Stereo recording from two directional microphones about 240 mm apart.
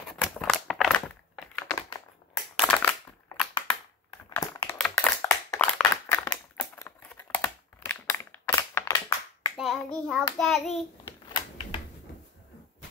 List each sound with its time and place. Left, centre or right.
0.1 s crumpling: centre
2.7 s crushing: centre
4.3 s a sound: centre
6.2 s crumpling: centre
9.6 s hands: centre
10.4 s child singing: centre
11.2 s a sound: left